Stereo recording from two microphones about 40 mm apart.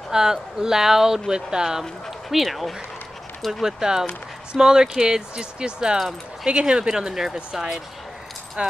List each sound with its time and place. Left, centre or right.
0.1 s speech: centre
2.2 s speech: centre
3.6 s speech: centre
8.6 s speech: right